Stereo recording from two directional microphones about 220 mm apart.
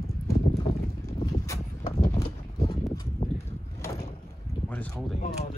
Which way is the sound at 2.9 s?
15° left (ahead or behind).